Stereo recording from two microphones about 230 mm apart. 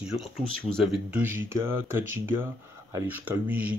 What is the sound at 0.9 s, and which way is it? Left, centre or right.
Speech, centre.